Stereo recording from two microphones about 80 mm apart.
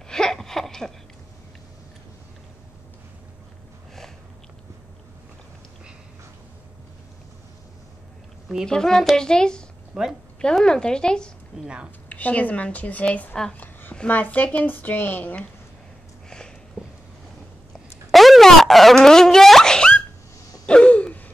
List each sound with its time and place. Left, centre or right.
0.1 s a sound: centre
8.6 s a woman's voice: centre
9.9 s a woman's voice: centre
10.4 s a woman's voice: centre
11.6 s a woman's voice: centre
12.1 s a woman's voice: centre
16.3 s sniff: centre
16.8 s vehicle: centre
18.1 s a sound: centre
20.6 s gasp: centre